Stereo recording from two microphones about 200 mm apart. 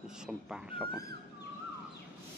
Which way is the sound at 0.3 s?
5° right (ahead or behind).